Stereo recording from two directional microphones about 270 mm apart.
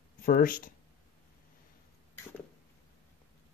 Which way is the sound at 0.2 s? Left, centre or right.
Left.